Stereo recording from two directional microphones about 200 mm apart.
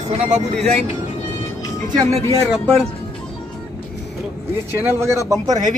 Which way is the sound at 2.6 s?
5° left (ahead or behind).